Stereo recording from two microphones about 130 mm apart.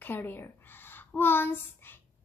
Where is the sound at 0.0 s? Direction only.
15° left (ahead or behind).